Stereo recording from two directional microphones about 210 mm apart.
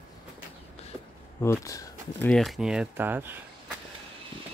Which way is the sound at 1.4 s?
15° left (ahead or behind).